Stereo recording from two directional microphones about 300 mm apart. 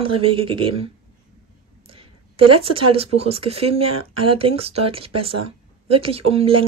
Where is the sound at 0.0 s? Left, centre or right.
Centre.